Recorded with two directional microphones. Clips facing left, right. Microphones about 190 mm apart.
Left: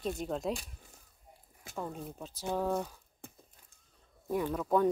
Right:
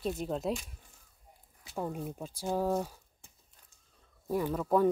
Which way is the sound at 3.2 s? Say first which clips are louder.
Left 13 dB; 55° left (ahead or behind).